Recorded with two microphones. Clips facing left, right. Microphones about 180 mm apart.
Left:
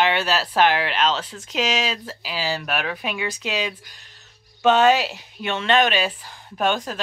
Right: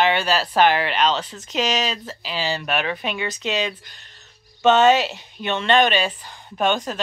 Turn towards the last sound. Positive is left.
turn(degrees=5)  # may be behind; listen again after turning